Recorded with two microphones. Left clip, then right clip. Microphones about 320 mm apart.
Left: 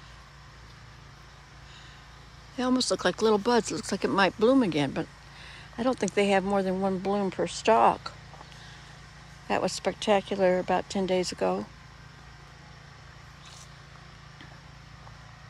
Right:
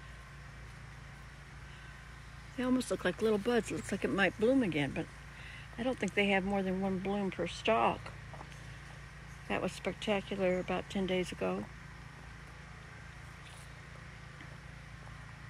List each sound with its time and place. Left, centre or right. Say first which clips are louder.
2.5 s speech: left 7 dB; centre
4.7 s speech: left 7 dB; left
5.8 s speech: left 7 dB; centre
9.5 s speech: left 9 dB; centre